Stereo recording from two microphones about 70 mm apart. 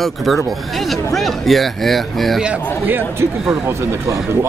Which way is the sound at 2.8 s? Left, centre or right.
Right.